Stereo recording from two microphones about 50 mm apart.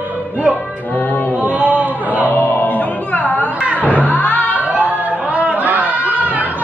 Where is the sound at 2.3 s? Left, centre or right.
Left.